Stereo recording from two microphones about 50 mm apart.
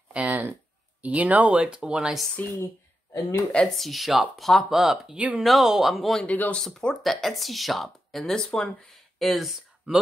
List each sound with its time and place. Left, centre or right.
0.1 s a sound: right
1.0 s speech: right
1.6 s speech: centre
2.4 s speech: left
3.1 s speech: left
3.6 s speech: centre
5.1 s speech: right
5.4 s speech: centre
6.2 s speech: left
6.6 s speech: centre
7.0 s speech: centre